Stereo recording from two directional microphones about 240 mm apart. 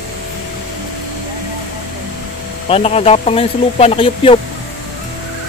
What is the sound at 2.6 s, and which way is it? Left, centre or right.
Speech, left.